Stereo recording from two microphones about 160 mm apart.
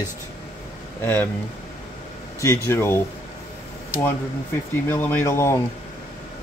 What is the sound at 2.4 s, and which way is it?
Speech, 20° left (ahead or behind).